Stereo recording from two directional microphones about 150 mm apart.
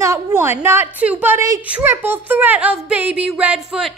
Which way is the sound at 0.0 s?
20° right (ahead or behind).